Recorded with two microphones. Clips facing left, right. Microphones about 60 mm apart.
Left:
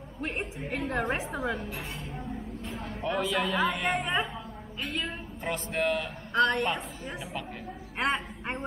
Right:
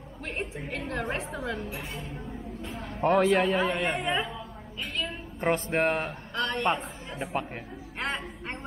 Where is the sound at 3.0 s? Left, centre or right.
Right.